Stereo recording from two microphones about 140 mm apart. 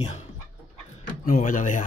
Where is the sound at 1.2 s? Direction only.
70° left (ahead or behind).